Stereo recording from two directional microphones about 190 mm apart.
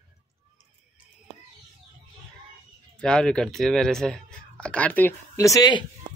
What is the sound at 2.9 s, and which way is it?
Speech, 5° left (ahead or behind).